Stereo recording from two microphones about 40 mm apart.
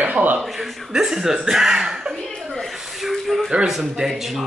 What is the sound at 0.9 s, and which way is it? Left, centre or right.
Speech, centre.